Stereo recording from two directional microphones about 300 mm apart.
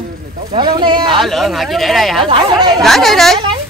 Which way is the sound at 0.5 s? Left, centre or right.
Centre.